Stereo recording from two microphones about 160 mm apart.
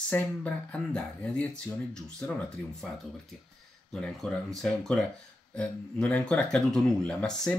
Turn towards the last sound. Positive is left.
turn(degrees=5)  # may be behind; listen again after turning